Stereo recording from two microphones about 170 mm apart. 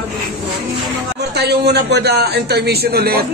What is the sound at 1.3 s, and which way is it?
A man's voice, 75° right (ahead or behind).